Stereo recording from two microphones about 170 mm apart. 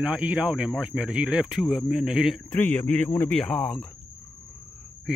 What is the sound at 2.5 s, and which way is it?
Speech, 10° left (ahead or behind).